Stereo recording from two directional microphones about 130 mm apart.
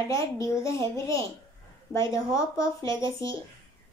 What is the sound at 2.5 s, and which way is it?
Speech, 25° left (ahead or behind).